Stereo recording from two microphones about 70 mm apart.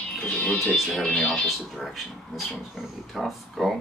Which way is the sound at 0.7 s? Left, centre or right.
Centre.